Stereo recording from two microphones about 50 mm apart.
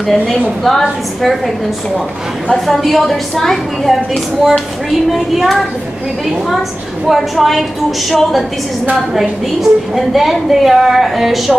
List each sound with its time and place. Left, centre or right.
0.0 s a woman's voice: centre
2.5 s a woman's voice: centre
7.1 s a woman's voice: centre